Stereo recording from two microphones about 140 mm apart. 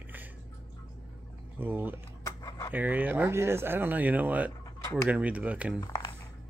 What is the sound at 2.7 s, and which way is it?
Speech, 10° right (ahead or behind).